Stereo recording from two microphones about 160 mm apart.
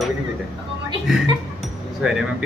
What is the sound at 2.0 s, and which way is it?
Speech, 5° right (ahead or behind).